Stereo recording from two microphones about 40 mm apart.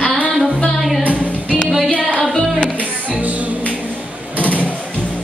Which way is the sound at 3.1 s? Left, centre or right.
Right.